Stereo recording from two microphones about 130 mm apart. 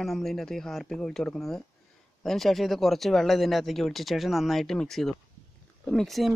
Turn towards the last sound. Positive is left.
turn(degrees=0)  # may be behind; listen again after turning